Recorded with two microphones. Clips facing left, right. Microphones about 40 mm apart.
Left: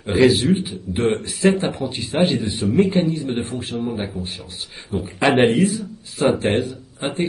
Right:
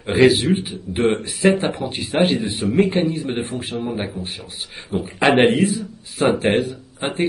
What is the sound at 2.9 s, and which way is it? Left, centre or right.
A man's voice, right.